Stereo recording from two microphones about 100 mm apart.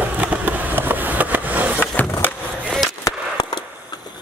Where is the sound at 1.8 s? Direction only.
15° left (ahead or behind).